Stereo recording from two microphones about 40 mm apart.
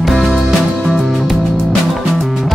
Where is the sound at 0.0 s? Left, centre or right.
Centre.